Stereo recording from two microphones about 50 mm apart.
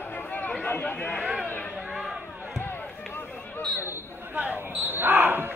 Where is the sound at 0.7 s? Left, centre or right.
Left.